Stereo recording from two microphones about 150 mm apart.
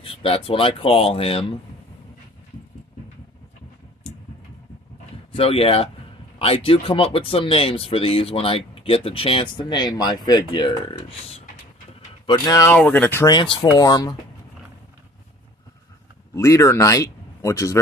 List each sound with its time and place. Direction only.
0.0 s speech: 40° left (ahead or behind)
5.3 s speech: 40° left (ahead or behind)
12.3 s speech: 25° left (ahead or behind)
12.7 s speech: 10° left (ahead or behind)
13.3 s speech: 35° left (ahead or behind)
16.3 s speech: 20° left (ahead or behind)